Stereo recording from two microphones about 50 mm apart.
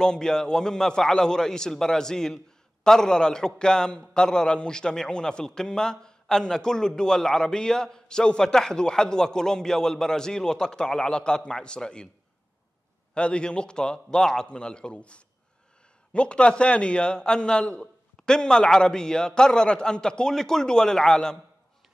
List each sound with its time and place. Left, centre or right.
0.0 s a man's voice: centre
13.1 s a man's voice: centre